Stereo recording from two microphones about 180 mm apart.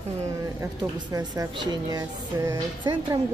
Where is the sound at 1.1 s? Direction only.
20° right (ahead or behind).